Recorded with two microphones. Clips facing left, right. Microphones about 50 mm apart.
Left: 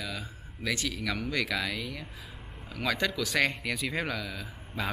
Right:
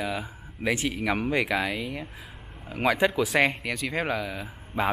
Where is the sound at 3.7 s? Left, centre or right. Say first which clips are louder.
Right 2 dB; centre.